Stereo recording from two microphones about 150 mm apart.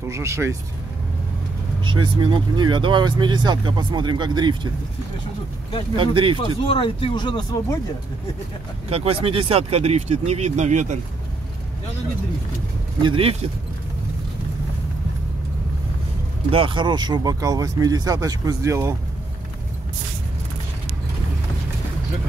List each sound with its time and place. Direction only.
0.0 s speech: 20° right (ahead or behind)
1.9 s speech: 30° right (ahead or behind)
5.9 s speech: 35° right (ahead or behind)
6.7 s speech: 35° left (ahead or behind)
8.9 s speech: 40° right (ahead or behind)
13.0 s speech: 35° right (ahead or behind)
16.4 s speech: 35° right (ahead or behind); by 18.9 s 20° right (ahead or behind)